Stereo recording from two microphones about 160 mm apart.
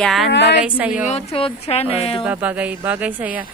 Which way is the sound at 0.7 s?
10° right (ahead or behind).